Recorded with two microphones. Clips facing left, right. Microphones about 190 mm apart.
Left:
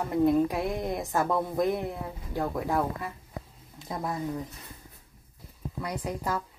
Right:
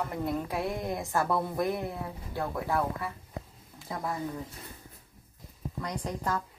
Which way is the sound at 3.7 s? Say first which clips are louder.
Left 2 dB; 20° left (ahead or behind).